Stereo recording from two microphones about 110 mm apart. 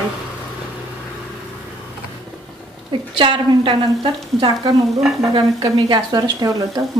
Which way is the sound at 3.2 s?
50° right (ahead or behind).